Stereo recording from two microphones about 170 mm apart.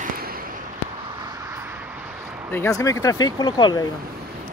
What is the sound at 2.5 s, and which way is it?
Speech, 15° left (ahead or behind).